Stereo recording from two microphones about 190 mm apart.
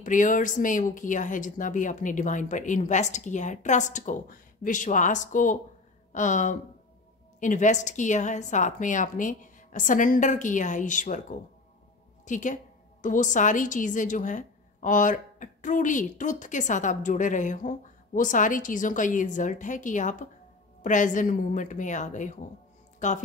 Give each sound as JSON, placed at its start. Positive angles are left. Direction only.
{"t": 0.0, "sound": "a woman's voice", "side_deg": 45}